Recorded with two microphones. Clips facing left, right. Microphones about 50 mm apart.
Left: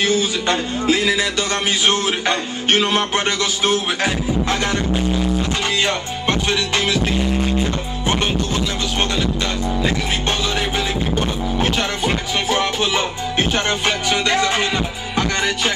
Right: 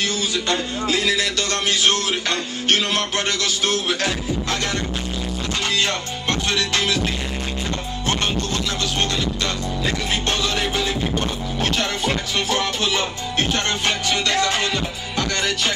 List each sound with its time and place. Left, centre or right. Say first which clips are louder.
0.0 s music: left 5 dB; left
10.8 s music: left 2 dB; centre